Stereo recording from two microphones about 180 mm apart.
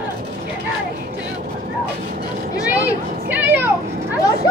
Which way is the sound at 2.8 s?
10° right (ahead or behind).